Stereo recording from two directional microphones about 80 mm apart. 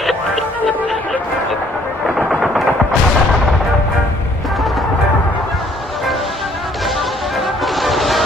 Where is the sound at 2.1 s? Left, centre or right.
Centre.